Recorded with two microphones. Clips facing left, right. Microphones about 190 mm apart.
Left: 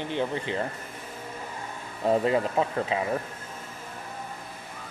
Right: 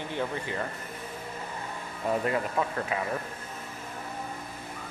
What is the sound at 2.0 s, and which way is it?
Speech, 25° left (ahead or behind).